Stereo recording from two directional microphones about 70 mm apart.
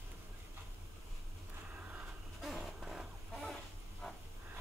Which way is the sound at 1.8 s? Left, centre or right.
Right.